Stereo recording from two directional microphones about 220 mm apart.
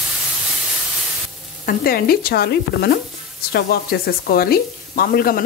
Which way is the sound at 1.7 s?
40° left (ahead or behind).